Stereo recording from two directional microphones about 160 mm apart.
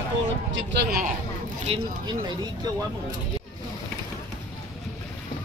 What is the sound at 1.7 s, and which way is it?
Speech, 35° right (ahead or behind).